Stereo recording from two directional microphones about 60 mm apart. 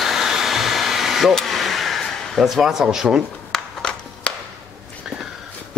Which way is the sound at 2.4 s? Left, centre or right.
Centre.